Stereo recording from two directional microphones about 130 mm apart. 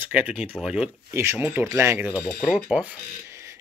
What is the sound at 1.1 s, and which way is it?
Speech, 20° right (ahead or behind).